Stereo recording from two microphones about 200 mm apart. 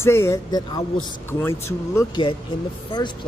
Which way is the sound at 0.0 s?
15° left (ahead or behind).